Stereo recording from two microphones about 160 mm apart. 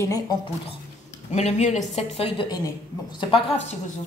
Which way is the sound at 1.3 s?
45° left (ahead or behind).